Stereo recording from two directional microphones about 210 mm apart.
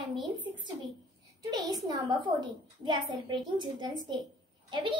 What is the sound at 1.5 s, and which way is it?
A child's voice, 20° right (ahead or behind).